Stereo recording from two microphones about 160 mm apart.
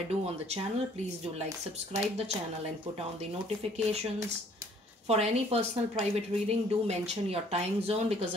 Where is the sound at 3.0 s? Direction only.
40° right (ahead or behind).